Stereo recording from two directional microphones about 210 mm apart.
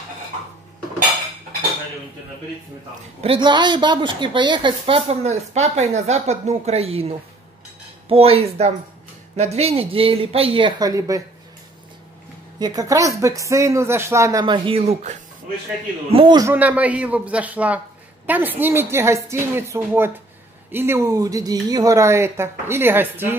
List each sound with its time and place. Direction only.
3.2 s a woman's voice: 25° right (ahead or behind)
12.5 s a woman's voice: 20° right (ahead or behind)
16.5 s speech: 5° right (ahead or behind)